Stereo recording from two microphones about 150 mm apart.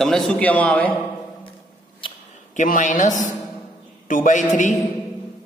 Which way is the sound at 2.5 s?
60° left (ahead or behind).